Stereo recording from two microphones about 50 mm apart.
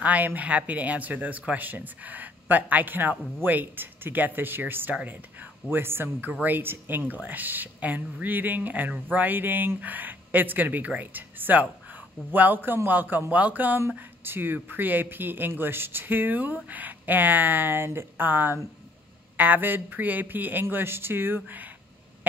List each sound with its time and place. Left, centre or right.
0.0 s speech: right